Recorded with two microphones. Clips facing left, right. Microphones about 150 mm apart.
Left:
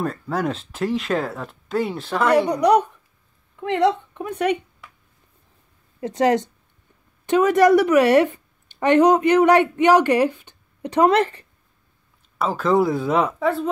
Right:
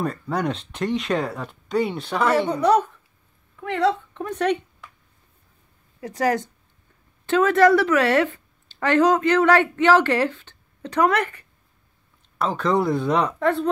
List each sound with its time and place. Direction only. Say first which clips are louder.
0.0 s speech: left 1 dB; centre (ahead or behind)
2.5 s a woman's voice: left 2 dB; 15° left (ahead or behind)
4.1 s a sound: left 1 dB; 10° left (ahead or behind)
5.9 s a woman's voice: left 4 dB; 25° left (ahead or behind)
12.4 s speech: left 3 dB; 5° left (ahead or behind)